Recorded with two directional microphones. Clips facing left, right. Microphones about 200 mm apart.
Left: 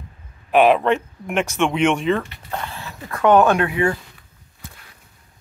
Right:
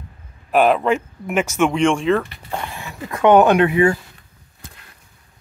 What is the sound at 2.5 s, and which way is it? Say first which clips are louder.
Speech: right 1 dB; 15° right (ahead or behind).